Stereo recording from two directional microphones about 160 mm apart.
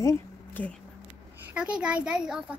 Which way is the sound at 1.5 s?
5° right (ahead or behind).